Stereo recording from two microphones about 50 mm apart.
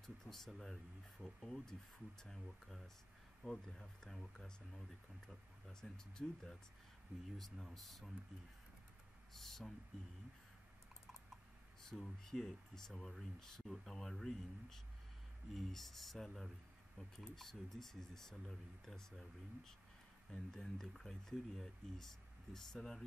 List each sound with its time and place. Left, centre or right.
0.0 s speech: centre
3.4 s speech: centre
5.7 s speech: centre
7.3 s speech: centre
9.3 s speech: centre
11.8 s speech: centre